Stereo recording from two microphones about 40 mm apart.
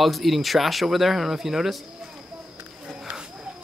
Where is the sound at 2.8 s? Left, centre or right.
Right.